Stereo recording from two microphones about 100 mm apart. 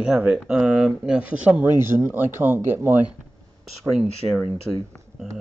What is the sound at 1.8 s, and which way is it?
Speech, 25° right (ahead or behind).